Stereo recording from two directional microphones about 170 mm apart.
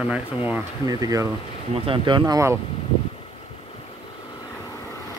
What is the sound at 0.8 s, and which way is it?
Speech, 20° right (ahead or behind).